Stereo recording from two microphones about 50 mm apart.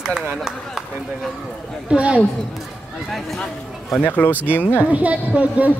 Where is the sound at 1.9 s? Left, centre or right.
Right.